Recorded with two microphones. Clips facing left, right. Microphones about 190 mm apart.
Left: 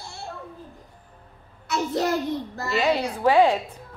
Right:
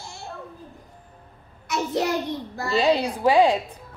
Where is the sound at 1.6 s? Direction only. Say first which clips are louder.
Even; 15° right (ahead or behind).